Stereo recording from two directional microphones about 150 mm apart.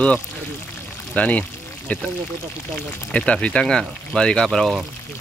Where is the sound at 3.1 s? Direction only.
10° left (ahead or behind).